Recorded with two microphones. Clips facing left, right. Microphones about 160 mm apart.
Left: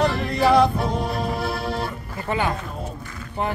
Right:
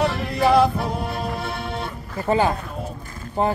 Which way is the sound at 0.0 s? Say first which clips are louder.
Even; centre (ahead or behind).